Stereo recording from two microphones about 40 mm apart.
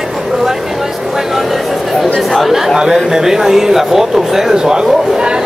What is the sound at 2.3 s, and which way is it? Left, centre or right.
Speech, centre.